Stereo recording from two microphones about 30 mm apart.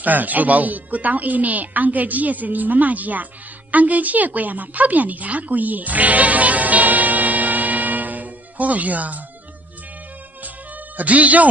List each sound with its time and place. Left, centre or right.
0.0 s a woman's voice: right
11.0 s speech: right